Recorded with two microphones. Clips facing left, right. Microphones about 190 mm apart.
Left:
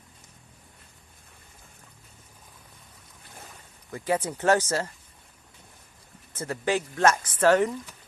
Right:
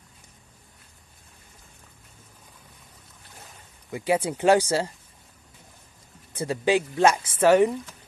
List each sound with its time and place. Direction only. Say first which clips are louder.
3.9 s speech: right 3 dB; 10° right (ahead or behind)
6.3 s speech: right 4 dB; 15° right (ahead or behind)